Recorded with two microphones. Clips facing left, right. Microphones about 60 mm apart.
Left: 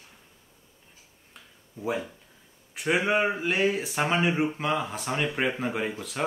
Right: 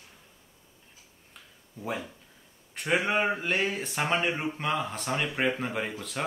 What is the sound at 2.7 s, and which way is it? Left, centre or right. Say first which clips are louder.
Speech: left 2 dB; centre.